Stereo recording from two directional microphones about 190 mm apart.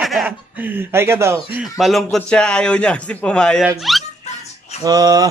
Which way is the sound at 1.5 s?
5° right (ahead or behind).